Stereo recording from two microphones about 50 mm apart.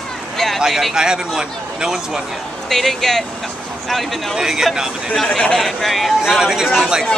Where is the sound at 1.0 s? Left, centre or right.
Centre.